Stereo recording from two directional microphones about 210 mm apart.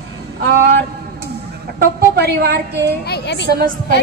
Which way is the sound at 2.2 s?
50° right (ahead or behind).